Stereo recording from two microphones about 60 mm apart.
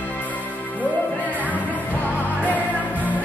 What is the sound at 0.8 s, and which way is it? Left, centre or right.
Music, left.